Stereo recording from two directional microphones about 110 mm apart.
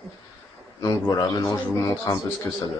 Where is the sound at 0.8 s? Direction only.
35° left (ahead or behind).